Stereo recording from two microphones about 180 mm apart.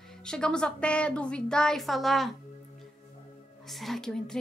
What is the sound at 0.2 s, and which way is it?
A woman's voice, 5° left (ahead or behind).